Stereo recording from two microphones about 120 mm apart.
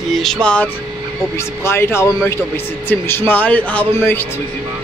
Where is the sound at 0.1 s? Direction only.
5° left (ahead or behind).